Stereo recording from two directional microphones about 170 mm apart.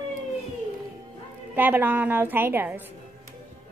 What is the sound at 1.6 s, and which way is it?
A woman's voice, 10° right (ahead or behind).